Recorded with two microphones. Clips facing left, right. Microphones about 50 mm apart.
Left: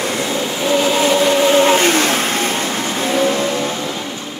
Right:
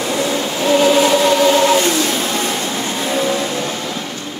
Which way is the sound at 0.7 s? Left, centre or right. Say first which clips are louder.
Right 4 dB; centre.